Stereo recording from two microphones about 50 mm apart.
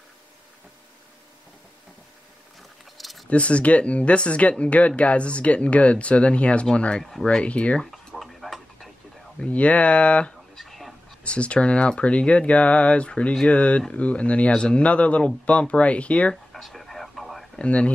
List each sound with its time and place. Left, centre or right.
3.0 s a sound: centre
3.3 s speech: left
7.0 s speech: centre
7.2 s speech: left
8.2 s tick-tock: centre
9.4 s speech: left
10.5 s whispering: centre
11.2 s speech: left
16.5 s radio: centre
17.6 s speech: left